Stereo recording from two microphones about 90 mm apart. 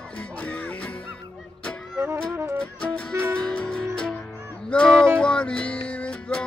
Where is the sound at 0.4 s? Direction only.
15° left (ahead or behind).